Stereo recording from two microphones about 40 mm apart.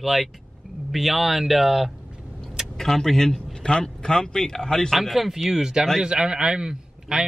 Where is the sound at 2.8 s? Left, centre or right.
Centre.